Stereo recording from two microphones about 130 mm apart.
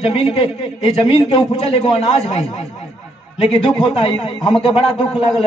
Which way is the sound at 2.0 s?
55° left (ahead or behind).